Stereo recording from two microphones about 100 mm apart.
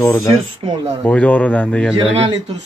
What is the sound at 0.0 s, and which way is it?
Speech, 30° left (ahead or behind).